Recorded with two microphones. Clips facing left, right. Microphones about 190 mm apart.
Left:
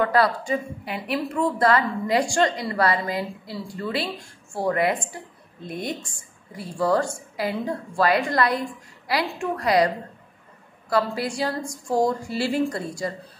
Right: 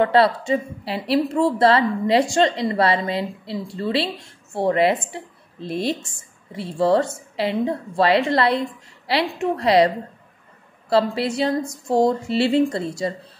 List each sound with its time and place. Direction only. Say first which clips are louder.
0.0 s a woman's voice: right 4 dB; 25° right (ahead or behind)